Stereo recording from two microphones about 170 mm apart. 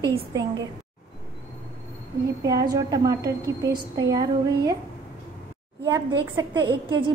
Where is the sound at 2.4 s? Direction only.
25° right (ahead or behind).